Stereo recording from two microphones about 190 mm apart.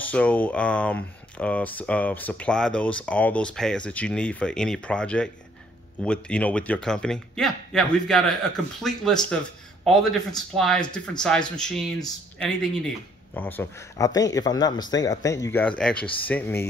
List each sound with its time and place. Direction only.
0.1 s a man's voice: 5° left (ahead or behind)